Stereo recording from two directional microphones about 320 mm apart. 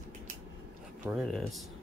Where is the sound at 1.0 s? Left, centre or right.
Centre.